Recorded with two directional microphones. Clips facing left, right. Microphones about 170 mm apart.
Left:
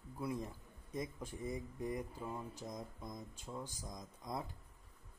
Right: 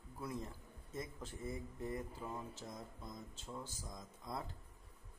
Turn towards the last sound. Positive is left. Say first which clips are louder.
# left 2 dB
turn(degrees=15)  # may be behind; listen again after turning